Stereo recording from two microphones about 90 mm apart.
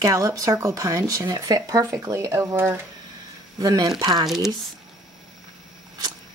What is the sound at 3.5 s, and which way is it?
Speech, 45° right (ahead or behind).